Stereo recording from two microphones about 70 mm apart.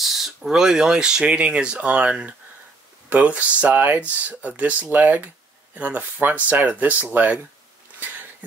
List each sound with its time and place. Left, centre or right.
0.0 s a sound: centre
0.5 s speech: centre
8.0 s bee: right